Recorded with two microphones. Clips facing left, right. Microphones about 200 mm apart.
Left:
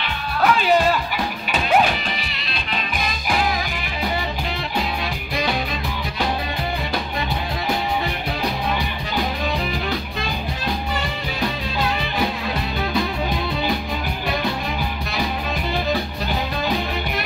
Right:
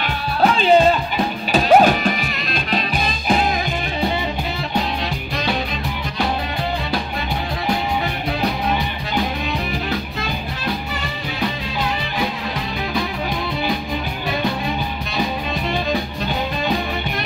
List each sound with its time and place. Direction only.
0.4 s music: 25° right (ahead or behind)
1.5 s music: 40° right (ahead or behind)
3.0 s music: 25° right (ahead or behind)